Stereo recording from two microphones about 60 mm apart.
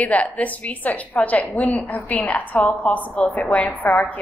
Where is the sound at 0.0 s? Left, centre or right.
Left.